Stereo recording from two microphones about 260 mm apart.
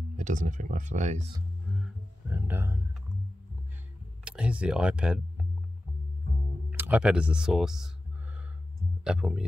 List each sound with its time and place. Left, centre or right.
0.2 s speech: right
1.8 s music: centre
4.2 s speech: centre
6.7 s a sound: centre
9.0 s speech: centre